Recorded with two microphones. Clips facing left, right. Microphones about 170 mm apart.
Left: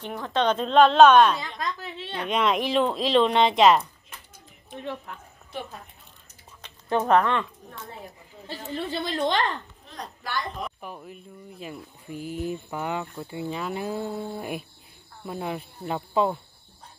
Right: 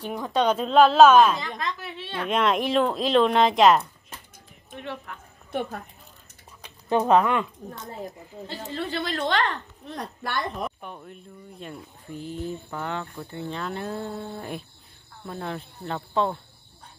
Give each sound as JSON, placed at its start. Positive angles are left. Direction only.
{"t": 0.0, "sound": "speech", "side_deg": -15}
{"t": 2.0, "sound": "speech", "side_deg": 15}
{"t": 2.2, "sound": "speech", "side_deg": 0}
{"t": 5.5, "sound": "a woman's voice", "side_deg": -60}
{"t": 6.6, "sound": "speech", "side_deg": -10}
{"t": 8.7, "sound": "a woman's voice", "side_deg": 20}
{"t": 9.8, "sound": "a woman's voice", "side_deg": -60}
{"t": 10.8, "sound": "speech", "side_deg": 5}